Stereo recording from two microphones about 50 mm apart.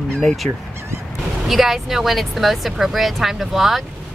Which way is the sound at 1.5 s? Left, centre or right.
Centre.